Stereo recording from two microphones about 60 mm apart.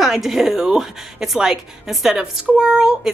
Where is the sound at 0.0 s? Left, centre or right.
Centre.